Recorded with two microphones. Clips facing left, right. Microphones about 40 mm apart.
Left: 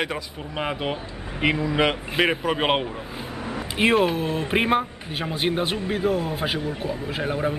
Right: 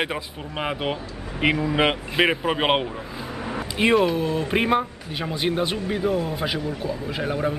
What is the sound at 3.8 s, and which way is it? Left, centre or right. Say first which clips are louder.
A man's voice: right 1 dB; centre.